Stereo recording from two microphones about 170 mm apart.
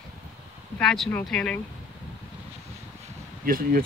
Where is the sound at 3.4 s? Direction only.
55° right (ahead or behind).